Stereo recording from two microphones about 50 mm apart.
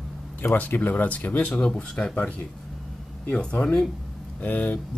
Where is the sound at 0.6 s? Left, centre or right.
Left.